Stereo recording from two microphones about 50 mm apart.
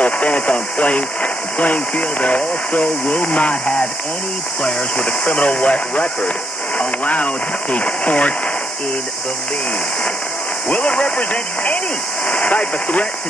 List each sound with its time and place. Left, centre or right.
0.0 s speech: left
10.7 s speech: left